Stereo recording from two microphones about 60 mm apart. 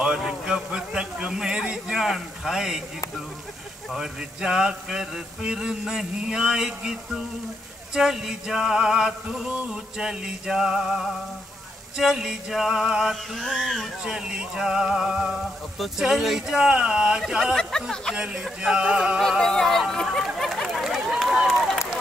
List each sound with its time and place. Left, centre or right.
0.0 s a man's voice: centre
3.9 s mantra: centre
14.0 s mantra: centre
17.6 s speech: centre
18.1 s mantra: centre
19.4 s speech: centre
20.3 s a sound: centre